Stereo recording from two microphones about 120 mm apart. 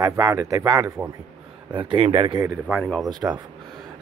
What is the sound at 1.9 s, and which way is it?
Speech, 45° right (ahead or behind).